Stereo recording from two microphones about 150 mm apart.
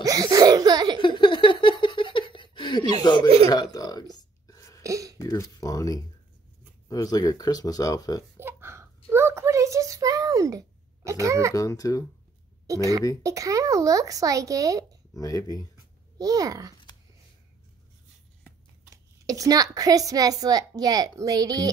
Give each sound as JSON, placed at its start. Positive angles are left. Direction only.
{"t": 0.0, "sound": "laughter", "side_deg": -25}
{"t": 1.0, "sound": "a sound", "side_deg": 30}
{"t": 3.4, "sound": "speech", "side_deg": 25}
{"t": 4.2, "sound": "whispering", "side_deg": 20}
{"t": 4.8, "sound": "a sound", "side_deg": -20}
{"t": 5.2, "sound": "speech", "side_deg": 25}
{"t": 8.4, "sound": "a sound", "side_deg": -15}
{"t": 11.1, "sound": "a woman's voice", "side_deg": -20}
{"t": 11.5, "sound": "speech", "side_deg": 25}
{"t": 13.2, "sound": "a woman's voice", "side_deg": -20}
{"t": 15.1, "sound": "speech", "side_deg": 25}
{"t": 16.2, "sound": "a woman's voice", "side_deg": -25}
{"t": 18.9, "sound": "a woman's voice", "side_deg": -25}